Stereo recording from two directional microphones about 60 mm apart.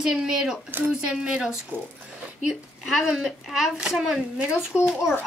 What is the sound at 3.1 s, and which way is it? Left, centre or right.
A woman's voice, centre.